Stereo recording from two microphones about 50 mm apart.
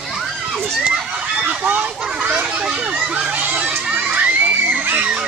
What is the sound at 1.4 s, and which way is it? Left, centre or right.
Speech, right.